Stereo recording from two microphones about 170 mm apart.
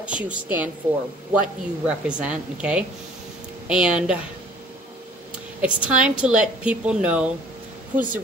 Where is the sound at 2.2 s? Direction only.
5° right (ahead or behind).